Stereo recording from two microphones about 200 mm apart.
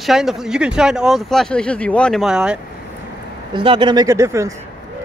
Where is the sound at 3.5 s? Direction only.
25° right (ahead or behind).